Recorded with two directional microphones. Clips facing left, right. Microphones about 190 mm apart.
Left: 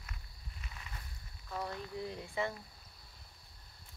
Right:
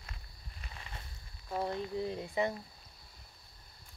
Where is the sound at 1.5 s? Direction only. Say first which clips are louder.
Right 6 dB; 25° right (ahead or behind).